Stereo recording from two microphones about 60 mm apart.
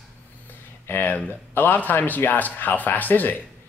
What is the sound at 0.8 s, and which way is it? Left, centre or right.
Speech, left.